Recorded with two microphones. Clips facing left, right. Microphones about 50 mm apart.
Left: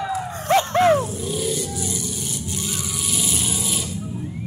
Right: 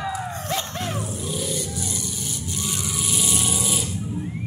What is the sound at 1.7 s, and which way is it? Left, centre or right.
Music, left.